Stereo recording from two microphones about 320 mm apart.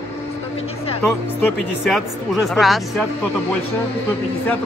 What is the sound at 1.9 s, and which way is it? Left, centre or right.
Speech, centre.